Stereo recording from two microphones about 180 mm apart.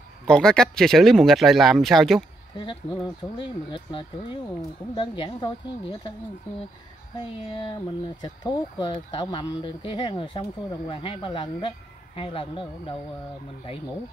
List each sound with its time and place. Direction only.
0.3 s speech: 5° left (ahead or behind)
2.5 s speech: 25° left (ahead or behind)
8.2 s speech: 25° left (ahead or behind)